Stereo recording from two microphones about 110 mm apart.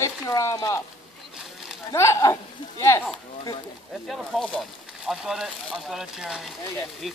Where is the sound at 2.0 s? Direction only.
25° left (ahead or behind).